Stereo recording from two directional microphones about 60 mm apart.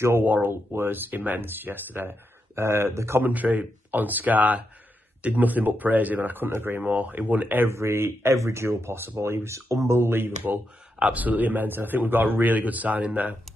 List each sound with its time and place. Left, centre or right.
0.0 s speech: right
3.3 s speech: right
7.7 s speech: right
9.7 s speech: right
9.9 s speech: right